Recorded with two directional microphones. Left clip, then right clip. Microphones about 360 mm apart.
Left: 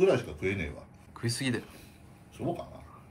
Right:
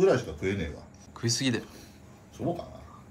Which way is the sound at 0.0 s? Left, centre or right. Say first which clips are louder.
Right 2 dB; centre.